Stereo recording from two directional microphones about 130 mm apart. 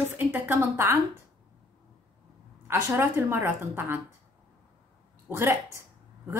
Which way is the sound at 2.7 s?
15° right (ahead or behind).